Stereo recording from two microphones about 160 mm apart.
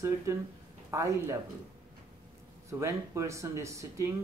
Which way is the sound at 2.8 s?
20° right (ahead or behind).